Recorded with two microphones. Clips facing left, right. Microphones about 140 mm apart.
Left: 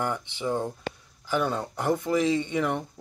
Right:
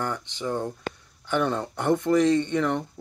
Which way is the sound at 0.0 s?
10° left (ahead or behind).